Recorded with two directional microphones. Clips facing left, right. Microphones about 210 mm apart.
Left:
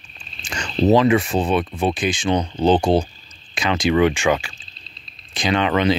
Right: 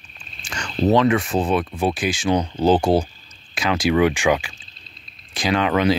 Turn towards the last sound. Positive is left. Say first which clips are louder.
# even
turn(degrees=-5)  # may be behind; listen again after turning